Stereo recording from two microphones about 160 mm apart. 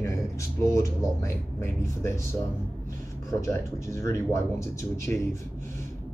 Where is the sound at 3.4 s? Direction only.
20° left (ahead or behind).